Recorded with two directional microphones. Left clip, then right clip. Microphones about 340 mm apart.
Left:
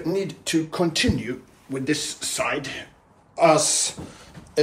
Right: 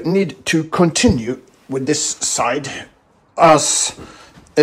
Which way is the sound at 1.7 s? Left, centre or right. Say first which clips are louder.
Right 7 dB; centre.